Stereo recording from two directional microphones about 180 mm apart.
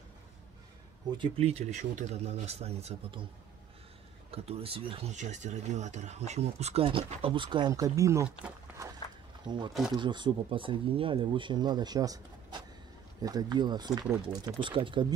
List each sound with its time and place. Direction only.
1.1 s speech: 30° right (ahead or behind)
4.3 s speech: 35° right (ahead or behind); by 8.5 s 10° right (ahead or behind)
9.5 s speech: 25° right (ahead or behind)